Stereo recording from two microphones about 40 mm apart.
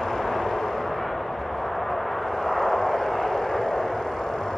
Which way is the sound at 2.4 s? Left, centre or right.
Centre.